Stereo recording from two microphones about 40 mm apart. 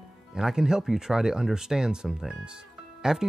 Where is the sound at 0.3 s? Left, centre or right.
Centre.